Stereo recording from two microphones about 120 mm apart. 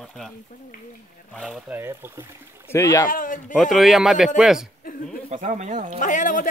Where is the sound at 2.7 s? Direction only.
25° left (ahead or behind).